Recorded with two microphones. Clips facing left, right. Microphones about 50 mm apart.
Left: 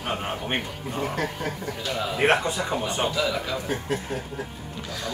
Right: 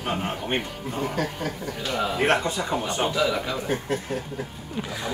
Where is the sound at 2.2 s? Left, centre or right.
Centre.